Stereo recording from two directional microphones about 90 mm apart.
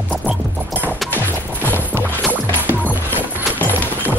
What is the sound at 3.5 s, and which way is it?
Clip-clop, 20° left (ahead or behind).